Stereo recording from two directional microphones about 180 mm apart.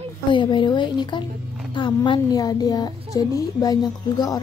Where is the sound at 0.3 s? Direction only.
25° left (ahead or behind).